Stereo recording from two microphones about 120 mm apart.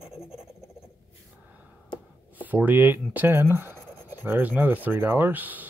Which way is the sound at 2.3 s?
15° right (ahead or behind).